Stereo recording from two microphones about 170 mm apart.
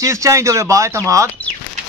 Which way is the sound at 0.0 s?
15° right (ahead or behind).